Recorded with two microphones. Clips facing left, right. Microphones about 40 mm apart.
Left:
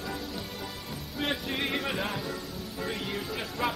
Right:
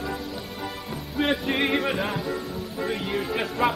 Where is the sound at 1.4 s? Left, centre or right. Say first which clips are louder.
Right 7 dB; right.